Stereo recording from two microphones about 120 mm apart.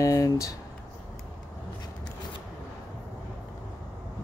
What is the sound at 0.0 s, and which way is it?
Speech, 25° left (ahead or behind).